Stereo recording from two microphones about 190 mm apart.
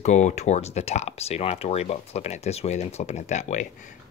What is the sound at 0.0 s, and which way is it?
Speech, 35° left (ahead or behind).